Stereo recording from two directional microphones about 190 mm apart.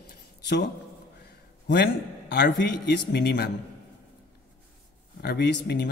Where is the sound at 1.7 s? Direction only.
60° left (ahead or behind).